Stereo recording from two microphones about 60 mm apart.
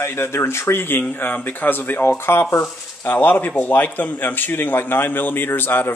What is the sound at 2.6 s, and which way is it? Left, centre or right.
Speech, left.